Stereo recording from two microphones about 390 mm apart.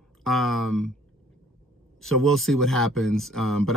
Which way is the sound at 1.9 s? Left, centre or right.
Centre.